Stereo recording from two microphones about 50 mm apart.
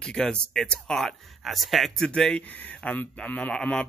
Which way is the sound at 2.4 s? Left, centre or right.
Left.